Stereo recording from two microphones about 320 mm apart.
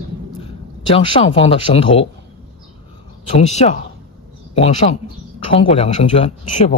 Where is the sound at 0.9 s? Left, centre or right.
Centre.